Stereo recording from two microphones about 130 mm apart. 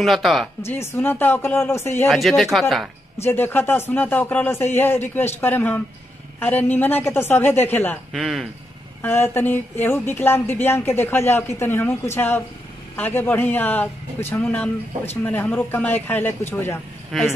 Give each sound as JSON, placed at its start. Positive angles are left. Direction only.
{"t": 0.0, "sound": "speech", "side_deg": 0}
{"t": 0.6, "sound": "speech", "side_deg": 20}
{"t": 2.0, "sound": "speech", "side_deg": 0}
{"t": 3.3, "sound": "speech", "side_deg": 15}
{"t": 8.1, "sound": "speech", "side_deg": 0}
{"t": 9.0, "sound": "speech", "side_deg": 15}
{"t": 17.1, "sound": "speech", "side_deg": 0}